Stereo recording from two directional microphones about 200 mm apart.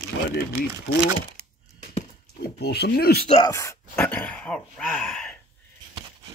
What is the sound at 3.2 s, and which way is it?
Speech, 20° left (ahead or behind).